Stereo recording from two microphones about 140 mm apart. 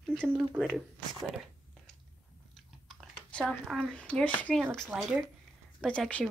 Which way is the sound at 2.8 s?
5° left (ahead or behind).